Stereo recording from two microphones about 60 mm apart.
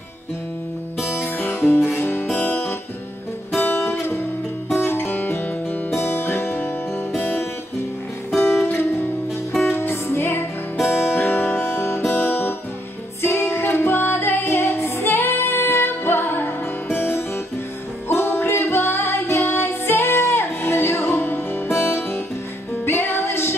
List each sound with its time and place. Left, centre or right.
1.0 s music: left
9.6 s music: left
12.1 s guitar: left
13.2 s music: left